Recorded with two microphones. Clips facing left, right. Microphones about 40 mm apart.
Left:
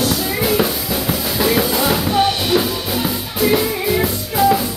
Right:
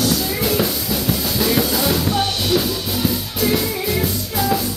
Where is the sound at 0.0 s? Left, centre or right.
Centre.